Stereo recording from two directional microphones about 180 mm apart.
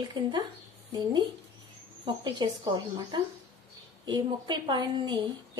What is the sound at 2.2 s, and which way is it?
A woman's voice, 20° right (ahead or behind).